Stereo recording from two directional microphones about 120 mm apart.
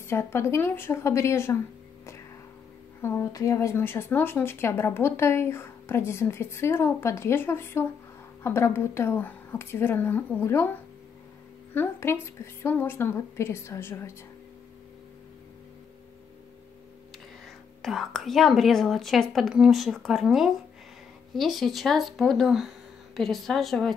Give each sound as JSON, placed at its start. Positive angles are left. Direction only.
{"t": 0.0, "sound": "speech", "side_deg": 20}
{"t": 3.0, "sound": "speech", "side_deg": 20}
{"t": 17.8, "sound": "speech", "side_deg": 0}